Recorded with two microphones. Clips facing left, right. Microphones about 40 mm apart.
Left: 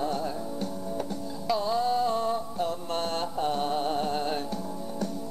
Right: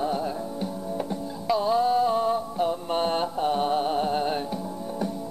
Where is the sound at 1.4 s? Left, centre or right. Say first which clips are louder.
Right 4 dB; centre.